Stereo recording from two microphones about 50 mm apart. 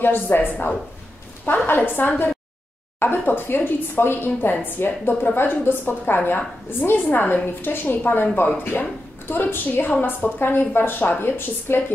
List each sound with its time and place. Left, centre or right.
0.0 s a woman's voice: left